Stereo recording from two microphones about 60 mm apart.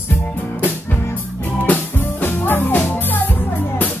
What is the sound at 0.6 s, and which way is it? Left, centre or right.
Music, left.